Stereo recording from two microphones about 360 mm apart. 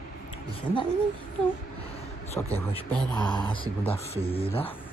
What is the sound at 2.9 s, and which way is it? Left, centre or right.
Speech, centre.